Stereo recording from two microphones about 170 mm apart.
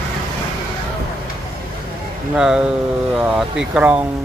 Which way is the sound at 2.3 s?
5° right (ahead or behind).